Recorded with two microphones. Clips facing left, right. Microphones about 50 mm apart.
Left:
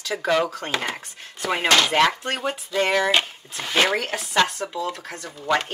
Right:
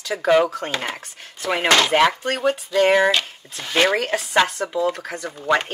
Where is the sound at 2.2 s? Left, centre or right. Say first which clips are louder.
Right 5 dB; centre.